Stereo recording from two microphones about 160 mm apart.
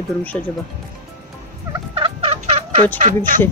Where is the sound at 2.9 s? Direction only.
55° right (ahead or behind).